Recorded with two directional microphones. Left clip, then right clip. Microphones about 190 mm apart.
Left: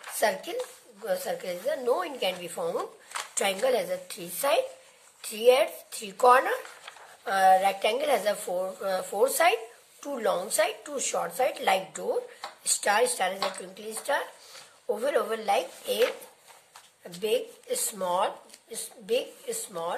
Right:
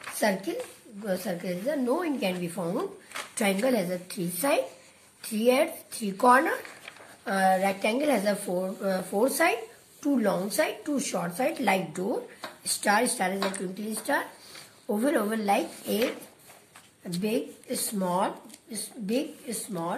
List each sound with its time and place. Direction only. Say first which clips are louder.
0.2 s speech: left 1 dB; 30° left (ahead or behind)
17.2 s speech: left 3 dB; 30° left (ahead or behind)